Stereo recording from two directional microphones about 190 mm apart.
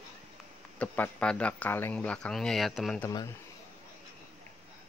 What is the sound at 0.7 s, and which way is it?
Speech, 10° left (ahead or behind).